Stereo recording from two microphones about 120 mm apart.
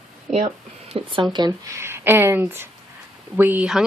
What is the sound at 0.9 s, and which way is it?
Speech, 45° right (ahead or behind).